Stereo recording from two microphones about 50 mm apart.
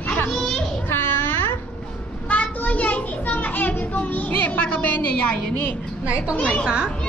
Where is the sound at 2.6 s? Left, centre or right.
Left.